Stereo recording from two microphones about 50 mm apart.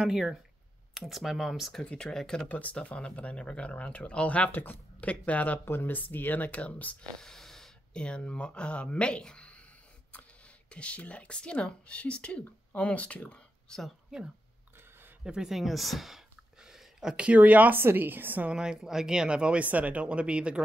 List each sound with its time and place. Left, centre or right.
0.9 s speech: centre
1.9 s speech: centre
2.4 s speech: left
4.5 s speech: left
5.7 s speech: left
7.0 s speech: centre
10.7 s speech: left
13.7 s speech: centre
15.2 s speech: centre
15.5 s a sound: centre
17.2 s speech: right
17.7 s a woman's voice: right
18.4 s speech: centre